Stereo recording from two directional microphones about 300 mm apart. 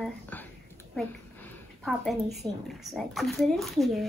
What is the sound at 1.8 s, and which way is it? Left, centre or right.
A woman's voice, centre.